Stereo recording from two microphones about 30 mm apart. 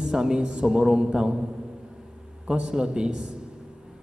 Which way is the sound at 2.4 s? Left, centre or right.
Right.